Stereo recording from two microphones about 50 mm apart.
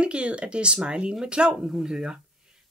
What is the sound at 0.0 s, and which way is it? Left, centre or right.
Speech, right.